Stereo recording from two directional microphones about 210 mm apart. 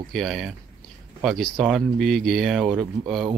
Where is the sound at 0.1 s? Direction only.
Centre (ahead or behind).